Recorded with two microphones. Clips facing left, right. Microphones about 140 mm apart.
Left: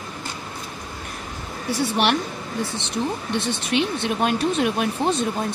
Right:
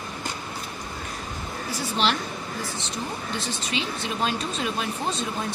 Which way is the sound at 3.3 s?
60° left (ahead or behind).